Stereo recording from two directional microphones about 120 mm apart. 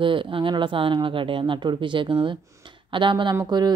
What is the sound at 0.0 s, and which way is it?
Speech, 45° right (ahead or behind).